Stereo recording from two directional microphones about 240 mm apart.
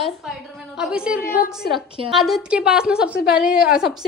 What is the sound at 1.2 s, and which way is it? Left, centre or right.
Speech, left.